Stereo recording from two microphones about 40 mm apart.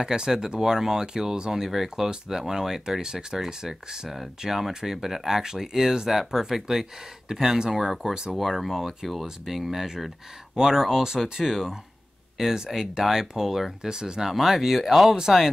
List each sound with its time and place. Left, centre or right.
0.0 s speech: centre
8.4 s speech: centre